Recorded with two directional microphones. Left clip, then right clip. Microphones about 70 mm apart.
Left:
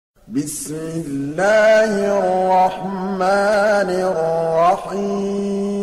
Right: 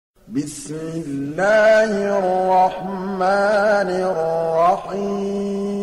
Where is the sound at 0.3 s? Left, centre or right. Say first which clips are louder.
Left 2 dB; left.